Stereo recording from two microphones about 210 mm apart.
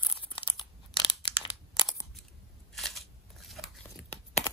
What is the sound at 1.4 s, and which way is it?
Crushing, 20° left (ahead or behind).